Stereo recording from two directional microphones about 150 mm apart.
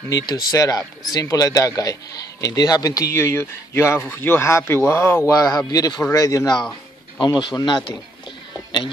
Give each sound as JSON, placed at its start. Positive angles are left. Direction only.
{"t": 0.1, "sound": "speech", "side_deg": 25}